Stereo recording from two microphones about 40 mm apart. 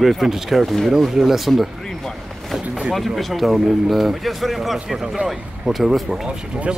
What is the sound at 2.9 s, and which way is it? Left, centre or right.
Speech, centre.